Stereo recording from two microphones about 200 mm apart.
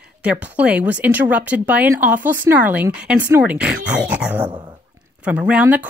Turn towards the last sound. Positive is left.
turn(degrees=-5)  # may be behind; listen again after turning